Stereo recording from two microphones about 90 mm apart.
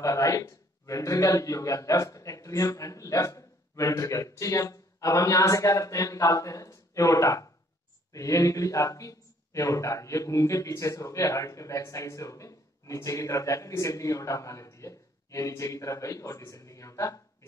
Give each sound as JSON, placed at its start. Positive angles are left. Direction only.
{"t": 0.0, "sound": "a man's voice", "side_deg": 35}